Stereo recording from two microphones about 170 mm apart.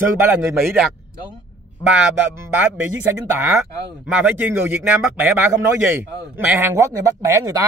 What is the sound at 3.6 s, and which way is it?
Speech, 5° right (ahead or behind).